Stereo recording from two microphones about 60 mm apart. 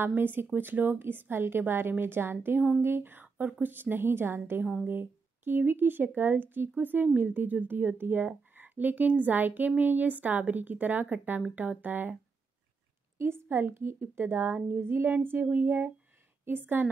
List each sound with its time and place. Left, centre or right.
0.0 s a woman's voice: right
13.2 s a woman's voice: right